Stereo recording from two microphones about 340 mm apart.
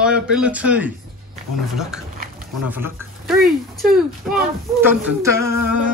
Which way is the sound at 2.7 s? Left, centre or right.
Centre.